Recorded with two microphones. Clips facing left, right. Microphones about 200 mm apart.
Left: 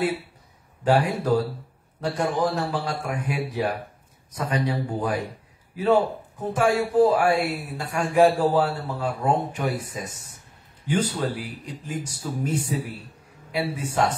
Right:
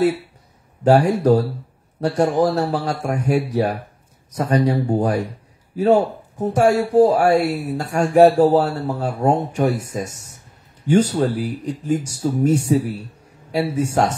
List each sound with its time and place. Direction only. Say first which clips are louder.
0.8 s speech: right 7 dB; 40° right (ahead or behind)